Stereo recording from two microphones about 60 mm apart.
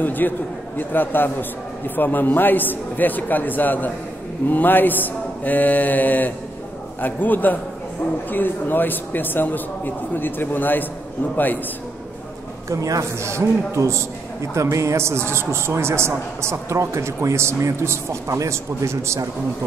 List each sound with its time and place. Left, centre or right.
0.0 s a man's voice: left
4.5 s a sound: left
7.0 s a man's voice: left
12.6 s a man's voice: right
13.2 s a man's voice: right